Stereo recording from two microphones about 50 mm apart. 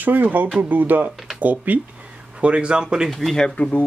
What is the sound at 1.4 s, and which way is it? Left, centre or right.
Speech, right.